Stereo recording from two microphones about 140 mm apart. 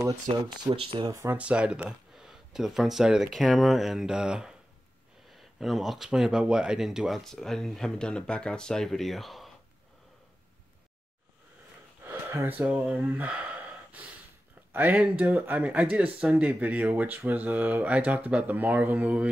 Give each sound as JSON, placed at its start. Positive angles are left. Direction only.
{"t": 0.7, "sound": "speech", "side_deg": -45}
{"t": 1.1, "sound": "speech", "side_deg": -15}
{"t": 12.0, "sound": "speech", "side_deg": -15}
{"t": 14.7, "sound": "speech", "side_deg": -15}